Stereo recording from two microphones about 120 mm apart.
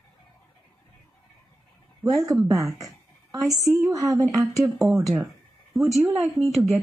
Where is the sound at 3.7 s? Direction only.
30° right (ahead or behind).